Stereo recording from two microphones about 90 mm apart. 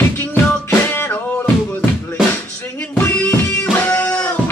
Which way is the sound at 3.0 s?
20° left (ahead or behind).